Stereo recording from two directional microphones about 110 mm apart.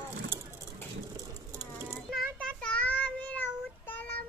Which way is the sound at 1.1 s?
35° right (ahead or behind).